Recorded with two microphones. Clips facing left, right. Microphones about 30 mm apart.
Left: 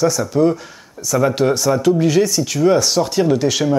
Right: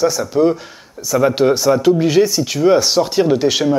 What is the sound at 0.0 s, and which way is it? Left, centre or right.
Speech, centre.